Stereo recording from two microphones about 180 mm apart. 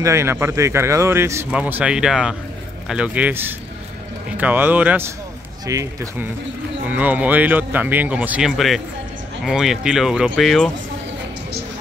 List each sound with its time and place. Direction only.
0.0 s speech: 15° right (ahead or behind); by 10.7 s centre (ahead or behind)